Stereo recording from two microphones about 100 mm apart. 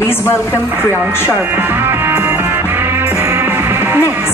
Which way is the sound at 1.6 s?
20° right (ahead or behind).